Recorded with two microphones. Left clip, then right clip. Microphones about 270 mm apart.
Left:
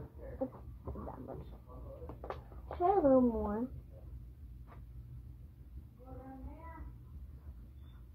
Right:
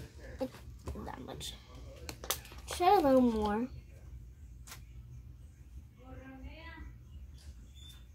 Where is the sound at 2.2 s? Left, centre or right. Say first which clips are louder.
Right 7 dB; right.